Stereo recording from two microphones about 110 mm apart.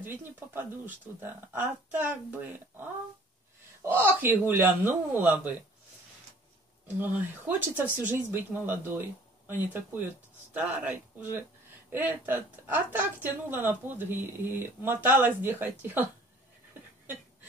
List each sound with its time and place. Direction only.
0.0 s a woman's voice: 15° right (ahead or behind)
7.0 s a woman's voice: 15° right (ahead or behind)
17.0 s a sound: 15° right (ahead or behind)